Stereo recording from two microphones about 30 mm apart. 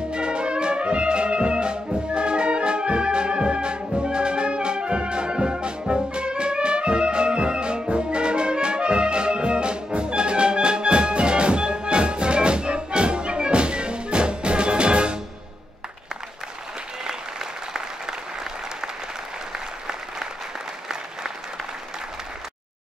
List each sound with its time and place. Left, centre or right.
0.1 s music: right
17.0 s applause: centre
19.5 s applause: centre